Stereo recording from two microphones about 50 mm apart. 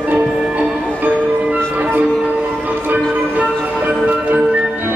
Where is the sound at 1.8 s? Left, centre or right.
Right.